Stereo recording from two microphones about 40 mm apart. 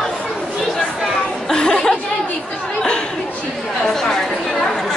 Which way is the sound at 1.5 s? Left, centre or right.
Centre.